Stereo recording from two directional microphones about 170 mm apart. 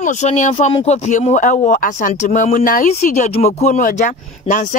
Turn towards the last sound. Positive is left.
turn(degrees=45)  # may be behind; listen again after turning